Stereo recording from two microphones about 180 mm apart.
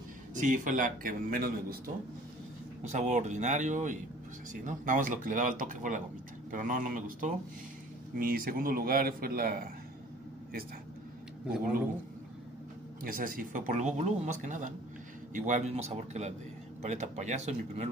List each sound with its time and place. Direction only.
0.3 s speech: 45° right (ahead or behind)
2.8 s speech: 40° right (ahead or behind)
13.0 s speech: 50° right (ahead or behind)